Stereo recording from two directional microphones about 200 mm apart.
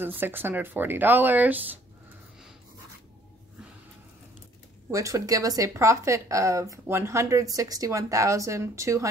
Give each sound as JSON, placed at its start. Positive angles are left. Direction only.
{"t": 0.0, "sound": "speech", "side_deg": -10}
{"t": 4.9, "sound": "speech", "side_deg": -15}